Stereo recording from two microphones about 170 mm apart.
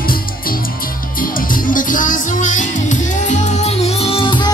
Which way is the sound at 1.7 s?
50° left (ahead or behind).